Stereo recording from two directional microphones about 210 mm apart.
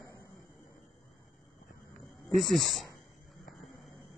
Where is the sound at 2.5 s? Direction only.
Centre (ahead or behind).